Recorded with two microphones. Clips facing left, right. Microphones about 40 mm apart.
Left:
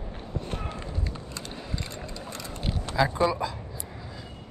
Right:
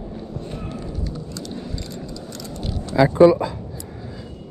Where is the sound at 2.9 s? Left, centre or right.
Right.